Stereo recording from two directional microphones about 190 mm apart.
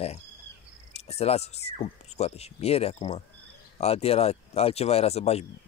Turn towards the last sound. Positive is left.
turn(degrees=35)  # may be behind; listen again after turning